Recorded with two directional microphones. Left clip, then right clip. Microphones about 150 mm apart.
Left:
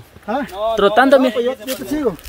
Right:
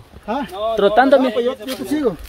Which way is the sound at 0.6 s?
20° left (ahead or behind).